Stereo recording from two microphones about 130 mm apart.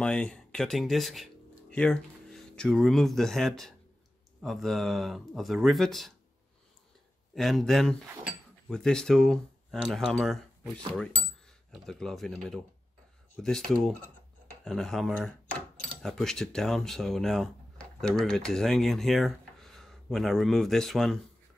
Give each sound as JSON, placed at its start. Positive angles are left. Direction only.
{"t": 0.0, "sound": "speech", "side_deg": 5}
{"t": 7.3, "sound": "speech", "side_deg": 0}
{"t": 11.7, "sound": "speech", "side_deg": 5}